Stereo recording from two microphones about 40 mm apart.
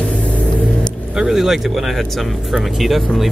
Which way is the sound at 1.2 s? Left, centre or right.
Centre.